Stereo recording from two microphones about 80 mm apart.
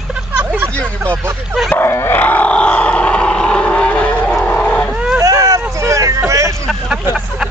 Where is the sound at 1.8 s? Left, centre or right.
Left.